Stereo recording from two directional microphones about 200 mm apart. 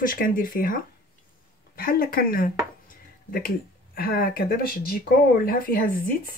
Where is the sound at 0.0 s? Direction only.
45° left (ahead or behind).